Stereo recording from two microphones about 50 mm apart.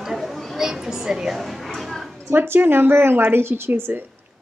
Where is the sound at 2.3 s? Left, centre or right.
Right.